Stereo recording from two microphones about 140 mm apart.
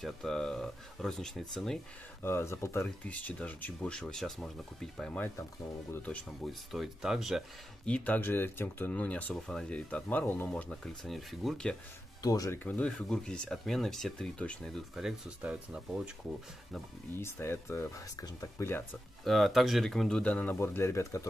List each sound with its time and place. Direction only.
0.0 s speech: 5° left (ahead or behind)
2.2 s speech: 20° left (ahead or behind); by 7.4 s centre (ahead or behind)
7.8 s speech: 10° left (ahead or behind)
12.2 s speech: 25° left (ahead or behind)
12.6 s speech: 10° left (ahead or behind)
15.0 s speech: 5° right (ahead or behind)
17.2 s speech: 20° left (ahead or behind)
19.2 s speech: centre (ahead or behind); by 21.3 s 20° left (ahead or behind)